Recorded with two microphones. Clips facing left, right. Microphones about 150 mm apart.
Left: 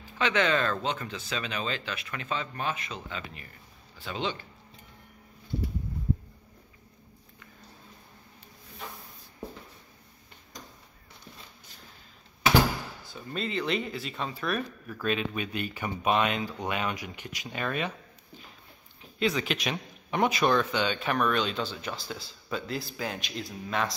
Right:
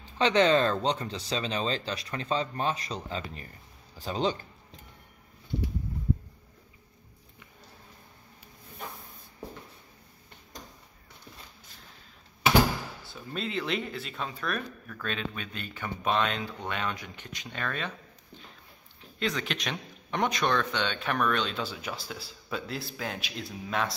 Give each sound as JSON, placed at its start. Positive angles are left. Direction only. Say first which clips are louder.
{"t": 0.0, "sound": "speech", "louder": "right 4 dB", "side_deg": -30}
{"t": 13.1, "sound": "speech", "louder": "left 1 dB", "side_deg": 0}